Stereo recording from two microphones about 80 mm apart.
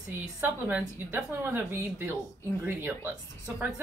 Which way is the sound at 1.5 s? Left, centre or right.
Right.